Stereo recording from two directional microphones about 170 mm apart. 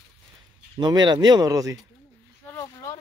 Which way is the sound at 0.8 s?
25° right (ahead or behind).